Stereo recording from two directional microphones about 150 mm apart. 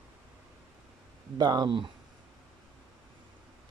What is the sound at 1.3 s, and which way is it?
Speech, 30° right (ahead or behind).